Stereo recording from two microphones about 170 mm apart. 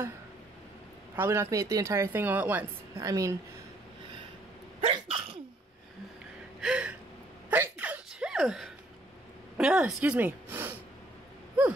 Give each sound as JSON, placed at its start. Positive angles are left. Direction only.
{"t": 1.1, "sound": "a woman's voice", "side_deg": -15}
{"t": 4.8, "sound": "sneeze", "side_deg": -35}
{"t": 6.6, "sound": "gasp", "side_deg": -5}
{"t": 7.4, "sound": "sneeze", "side_deg": -10}
{"t": 9.6, "sound": "speech", "side_deg": -5}